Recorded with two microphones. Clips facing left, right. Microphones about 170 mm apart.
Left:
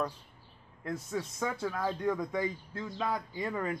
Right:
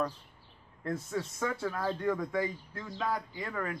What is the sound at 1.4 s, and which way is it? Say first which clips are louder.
Speech: even; 15° left (ahead or behind).